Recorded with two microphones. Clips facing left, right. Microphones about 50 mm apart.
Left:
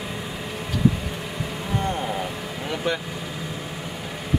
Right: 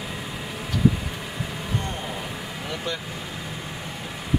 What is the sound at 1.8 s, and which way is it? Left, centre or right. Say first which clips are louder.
Vehicle: left 7 dB; centre.